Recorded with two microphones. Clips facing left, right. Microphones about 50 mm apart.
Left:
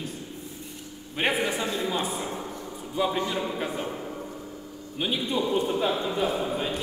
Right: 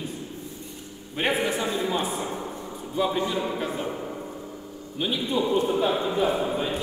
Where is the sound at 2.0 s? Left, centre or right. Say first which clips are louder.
Right 2 dB; centre.